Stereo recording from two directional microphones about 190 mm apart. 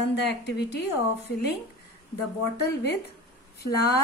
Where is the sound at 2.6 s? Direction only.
60° left (ahead or behind).